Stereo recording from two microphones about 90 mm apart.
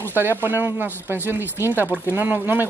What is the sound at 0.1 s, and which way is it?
Speech, 25° right (ahead or behind).